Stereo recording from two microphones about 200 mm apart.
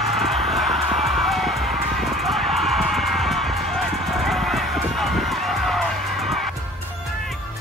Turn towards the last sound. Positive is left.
turn(degrees=0)  # may be behind; listen again after turning